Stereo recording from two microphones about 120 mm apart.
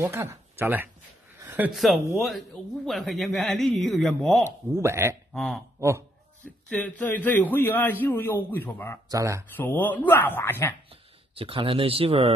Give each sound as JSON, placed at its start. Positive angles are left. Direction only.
{"t": 0.0, "sound": "speech", "side_deg": -20}
{"t": 1.7, "sound": "a man's voice", "side_deg": 0}
{"t": 4.5, "sound": "speech", "side_deg": -20}
{"t": 5.3, "sound": "speech", "side_deg": 5}
{"t": 5.8, "sound": "speech", "side_deg": -25}
{"t": 6.4, "sound": "a man's voice", "side_deg": 10}
{"t": 9.1, "sound": "speech", "side_deg": -25}
{"t": 9.5, "sound": "a man's voice", "side_deg": 15}
{"t": 10.9, "sound": "speech", "side_deg": -50}